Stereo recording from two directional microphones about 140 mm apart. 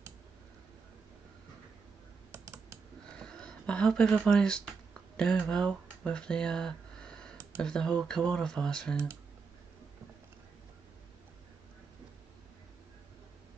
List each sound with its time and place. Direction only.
2.3 s typing: 20° right (ahead or behind)
3.2 s a sound: 5° left (ahead or behind)
4.3 s speech: 5° left (ahead or behind)
8.9 s speech: 20° right (ahead or behind)